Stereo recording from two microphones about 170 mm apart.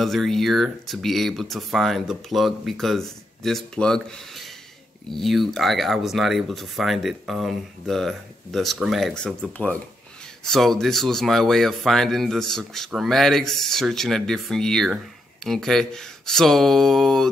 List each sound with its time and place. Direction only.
0.0 s speech: centre (ahead or behind)